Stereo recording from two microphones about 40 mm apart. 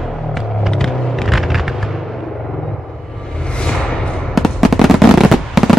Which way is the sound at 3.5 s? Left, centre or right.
Left.